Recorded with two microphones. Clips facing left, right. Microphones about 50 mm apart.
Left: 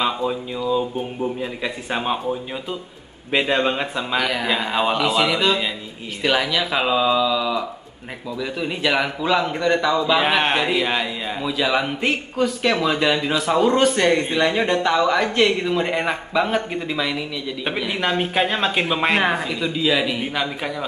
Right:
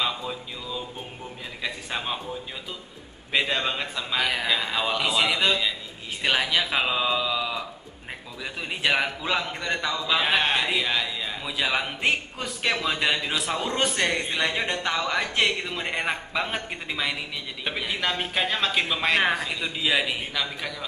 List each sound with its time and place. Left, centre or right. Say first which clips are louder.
0.0 s speech: left 7 dB; centre
3.3 s a man's voice: left 6 dB; centre
4.2 s a man's voice: left 2 dB; centre
4.5 s speech: left 5 dB; centre
6.2 s a man's voice: left 4 dB; centre
9.4 s a man's voice: left 9 dB; centre
11.4 s a man's voice: left 6 dB; centre
17.7 s speech: left 5 dB; centre
19.2 s a man's voice: left 4 dB; centre
20.2 s speech: left 6 dB; centre